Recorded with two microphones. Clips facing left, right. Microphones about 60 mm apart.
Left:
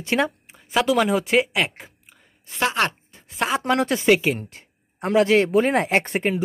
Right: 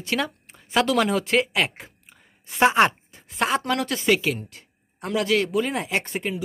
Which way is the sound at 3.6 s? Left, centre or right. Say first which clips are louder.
Left 4 dB; left.